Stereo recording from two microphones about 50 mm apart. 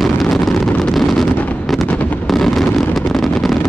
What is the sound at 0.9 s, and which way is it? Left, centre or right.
Wind noise, centre.